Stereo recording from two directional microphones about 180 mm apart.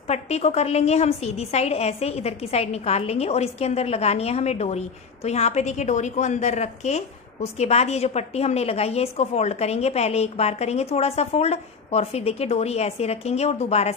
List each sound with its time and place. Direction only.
0.1 s a woman's voice: 35° left (ahead or behind)